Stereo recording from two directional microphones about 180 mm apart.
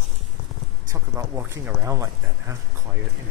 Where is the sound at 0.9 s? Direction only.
15° right (ahead or behind).